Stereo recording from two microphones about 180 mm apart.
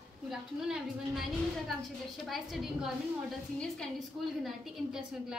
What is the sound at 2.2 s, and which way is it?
A woman's voice, centre (ahead or behind).